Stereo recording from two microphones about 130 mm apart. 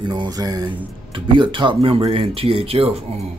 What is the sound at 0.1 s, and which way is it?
Speech, 30° right (ahead or behind).